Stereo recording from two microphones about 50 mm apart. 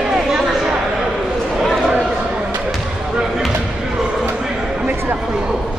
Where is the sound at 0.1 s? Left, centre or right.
Centre.